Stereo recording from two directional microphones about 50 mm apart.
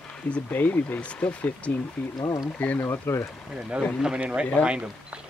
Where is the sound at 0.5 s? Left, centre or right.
Left.